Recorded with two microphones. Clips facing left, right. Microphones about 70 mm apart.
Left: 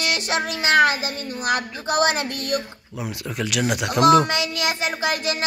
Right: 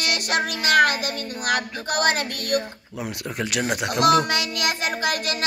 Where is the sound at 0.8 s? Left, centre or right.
Right.